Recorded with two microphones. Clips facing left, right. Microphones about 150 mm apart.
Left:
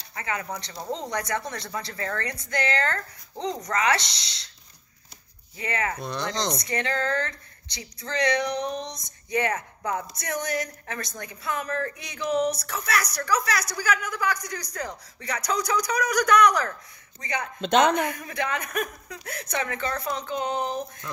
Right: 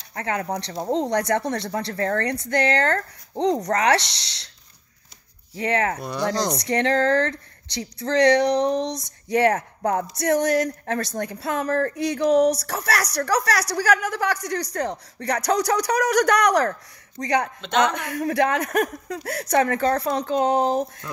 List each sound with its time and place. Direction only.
0.1 s a woman's voice: 60° right (ahead or behind)
5.6 s a woman's voice: 70° right (ahead or behind)
5.9 s speech: 5° right (ahead or behind)
6.5 s a woman's voice: 70° right (ahead or behind)
9.6 s speech: 50° right (ahead or behind)
10.1 s a woman's voice: 75° right (ahead or behind)
19.6 s a woman's voice: 55° right (ahead or behind); by 20.8 s 85° right